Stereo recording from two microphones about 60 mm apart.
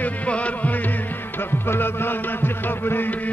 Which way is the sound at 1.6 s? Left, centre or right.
Left.